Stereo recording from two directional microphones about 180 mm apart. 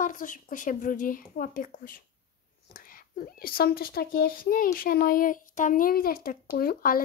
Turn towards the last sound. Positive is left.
turn(degrees=55)  # may be behind; listen again after turning